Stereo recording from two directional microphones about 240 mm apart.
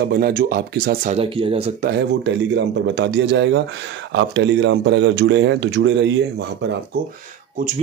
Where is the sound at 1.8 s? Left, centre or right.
Right.